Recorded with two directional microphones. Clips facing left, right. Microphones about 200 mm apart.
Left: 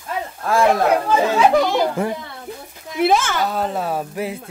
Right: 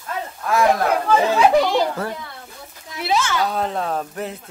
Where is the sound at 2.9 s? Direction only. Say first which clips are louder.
Left 5 dB; 55° left (ahead or behind).